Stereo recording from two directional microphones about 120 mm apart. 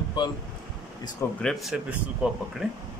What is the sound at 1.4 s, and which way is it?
Speech, centre (ahead or behind).